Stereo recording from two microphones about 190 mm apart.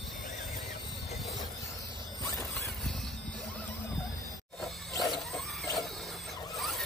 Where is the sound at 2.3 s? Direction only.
15° left (ahead or behind).